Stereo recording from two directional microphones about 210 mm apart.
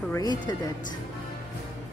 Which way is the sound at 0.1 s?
20° left (ahead or behind).